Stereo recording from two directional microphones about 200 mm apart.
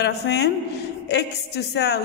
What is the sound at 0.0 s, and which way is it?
A man's voice, 55° left (ahead or behind).